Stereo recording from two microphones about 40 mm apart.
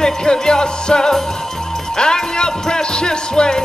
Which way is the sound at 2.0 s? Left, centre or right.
Centre.